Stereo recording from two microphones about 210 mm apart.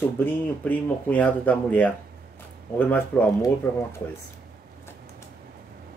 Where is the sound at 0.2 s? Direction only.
10° left (ahead or behind).